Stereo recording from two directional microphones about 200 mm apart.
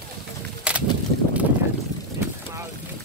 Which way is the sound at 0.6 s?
5° right (ahead or behind).